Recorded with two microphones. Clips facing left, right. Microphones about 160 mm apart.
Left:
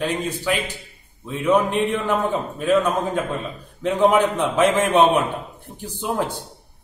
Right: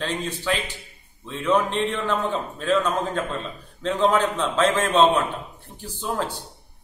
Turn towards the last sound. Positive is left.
turn(degrees=15)  # may be behind; listen again after turning